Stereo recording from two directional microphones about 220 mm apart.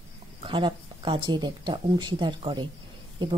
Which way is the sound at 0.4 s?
25° right (ahead or behind).